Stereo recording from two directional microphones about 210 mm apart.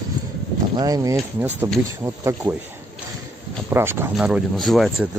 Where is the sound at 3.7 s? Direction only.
10° right (ahead or behind).